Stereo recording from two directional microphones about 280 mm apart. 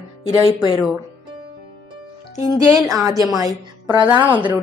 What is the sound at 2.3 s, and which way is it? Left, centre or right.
Speech, centre.